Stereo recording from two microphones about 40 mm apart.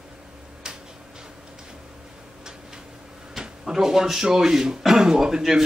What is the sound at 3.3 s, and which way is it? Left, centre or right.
Speech, centre.